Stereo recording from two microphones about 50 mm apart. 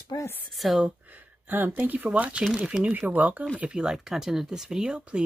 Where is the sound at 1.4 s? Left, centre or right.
Right.